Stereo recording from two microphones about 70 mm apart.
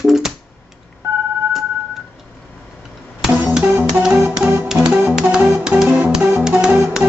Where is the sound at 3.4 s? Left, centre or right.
Centre.